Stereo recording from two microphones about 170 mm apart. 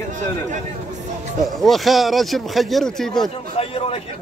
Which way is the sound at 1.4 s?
Centre (ahead or behind).